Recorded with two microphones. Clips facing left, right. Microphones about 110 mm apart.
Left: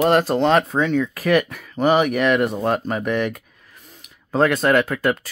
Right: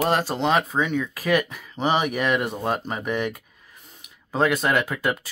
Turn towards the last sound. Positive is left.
turn(degrees=-5)  # may be behind; listen again after turning